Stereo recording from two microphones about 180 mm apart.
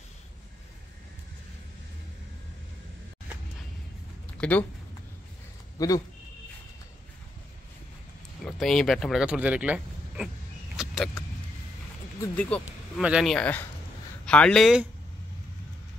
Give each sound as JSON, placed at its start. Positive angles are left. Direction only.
{"t": 4.4, "sound": "speech", "side_deg": 10}
{"t": 5.8, "sound": "speech", "side_deg": 20}
{"t": 8.5, "sound": "speech", "side_deg": 5}
{"t": 10.8, "sound": "vehicle", "side_deg": 0}
{"t": 12.4, "sound": "speech", "side_deg": 5}